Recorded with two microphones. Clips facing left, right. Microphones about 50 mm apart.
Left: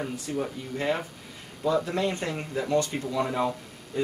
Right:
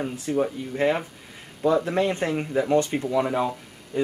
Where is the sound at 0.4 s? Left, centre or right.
Centre.